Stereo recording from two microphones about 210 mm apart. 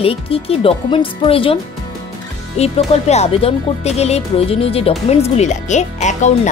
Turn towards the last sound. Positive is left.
turn(degrees=35)  # may be behind; listen again after turning